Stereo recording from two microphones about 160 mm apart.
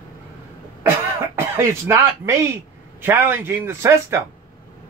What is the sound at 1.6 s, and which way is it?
A man's voice, 15° right (ahead or behind).